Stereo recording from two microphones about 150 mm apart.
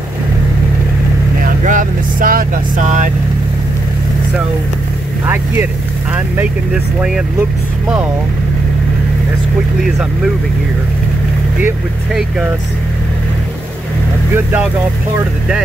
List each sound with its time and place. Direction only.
1.4 s speech: 60° right (ahead or behind)
5.2 s speech: 15° right (ahead or behind)
12.1 s speech: 5° right (ahead or behind)
14.3 s speech: 10° right (ahead or behind)